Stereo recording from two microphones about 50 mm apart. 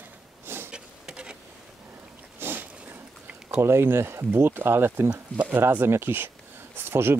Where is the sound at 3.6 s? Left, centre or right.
Right.